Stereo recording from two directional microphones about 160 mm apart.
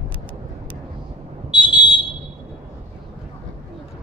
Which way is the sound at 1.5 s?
10° right (ahead or behind).